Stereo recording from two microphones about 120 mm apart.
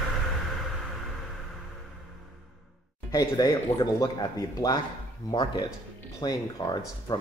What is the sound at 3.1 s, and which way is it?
Speech, 30° left (ahead or behind).